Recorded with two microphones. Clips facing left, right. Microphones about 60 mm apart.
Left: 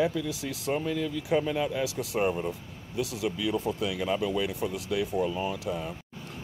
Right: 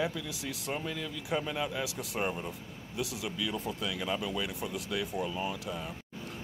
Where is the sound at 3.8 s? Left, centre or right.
Centre.